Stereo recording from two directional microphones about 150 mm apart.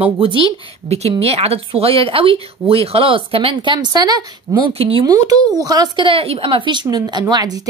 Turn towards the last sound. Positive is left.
turn(degrees=-25)  # may be behind; listen again after turning